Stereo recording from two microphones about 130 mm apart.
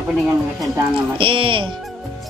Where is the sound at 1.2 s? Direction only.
40° right (ahead or behind).